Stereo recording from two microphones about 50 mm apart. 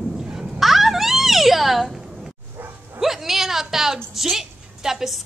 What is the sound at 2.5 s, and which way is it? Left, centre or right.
Dog, right.